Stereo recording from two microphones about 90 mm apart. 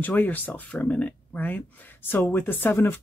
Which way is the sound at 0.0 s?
20° left (ahead or behind).